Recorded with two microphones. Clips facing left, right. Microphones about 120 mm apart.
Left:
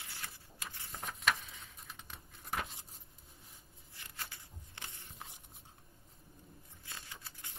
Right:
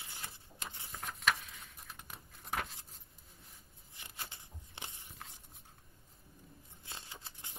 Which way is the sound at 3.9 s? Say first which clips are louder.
Even; 20° right (ahead or behind).